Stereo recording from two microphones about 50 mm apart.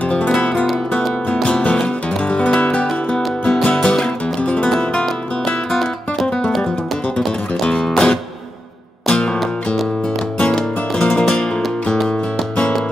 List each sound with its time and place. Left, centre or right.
0.4 s music: left
5.7 s music: centre
7.2 s music: centre